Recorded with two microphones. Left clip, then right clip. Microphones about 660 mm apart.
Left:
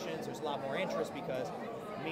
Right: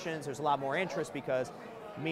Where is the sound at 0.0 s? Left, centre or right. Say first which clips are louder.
Right 4 dB; right.